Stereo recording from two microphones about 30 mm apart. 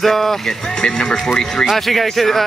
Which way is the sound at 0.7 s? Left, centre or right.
Left.